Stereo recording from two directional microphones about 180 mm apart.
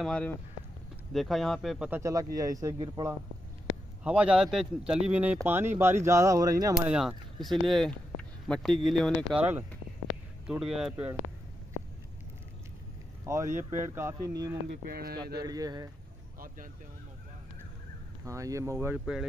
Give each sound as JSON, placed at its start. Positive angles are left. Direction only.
{"t": 0.0, "sound": "speech", "side_deg": 5}
{"t": 1.9, "sound": "speech", "side_deg": -15}
{"t": 4.0, "sound": "speech", "side_deg": -5}
{"t": 6.8, "sound": "speech", "side_deg": -5}
{"t": 9.4, "sound": "speech", "side_deg": -10}
{"t": 13.2, "sound": "speech", "side_deg": -15}
{"t": 14.9, "sound": "speech", "side_deg": -55}
{"t": 15.4, "sound": "speech", "side_deg": -20}
{"t": 18.2, "sound": "speech", "side_deg": -15}